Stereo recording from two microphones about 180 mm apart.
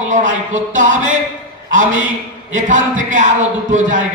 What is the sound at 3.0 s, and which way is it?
Speech, 45° right (ahead or behind).